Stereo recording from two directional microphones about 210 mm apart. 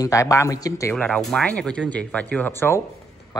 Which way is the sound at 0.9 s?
5° left (ahead or behind).